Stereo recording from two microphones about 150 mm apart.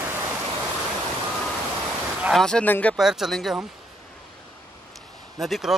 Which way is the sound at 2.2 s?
5° left (ahead or behind).